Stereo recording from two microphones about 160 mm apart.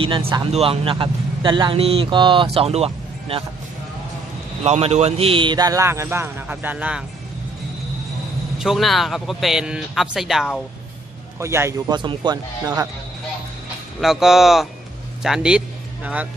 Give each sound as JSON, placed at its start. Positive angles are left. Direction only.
{"t": 0.0, "sound": "speech", "side_deg": -35}
{"t": 4.6, "sound": "a man's voice", "side_deg": -40}
{"t": 8.5, "sound": "speech", "side_deg": 0}
{"t": 11.3, "sound": "a man's voice", "side_deg": -15}
{"t": 11.9, "sound": "speech", "side_deg": -30}
{"t": 14.0, "sound": "speech", "side_deg": 0}